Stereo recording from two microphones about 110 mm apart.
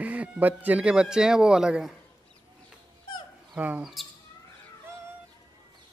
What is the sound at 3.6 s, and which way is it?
Speech, 10° right (ahead or behind).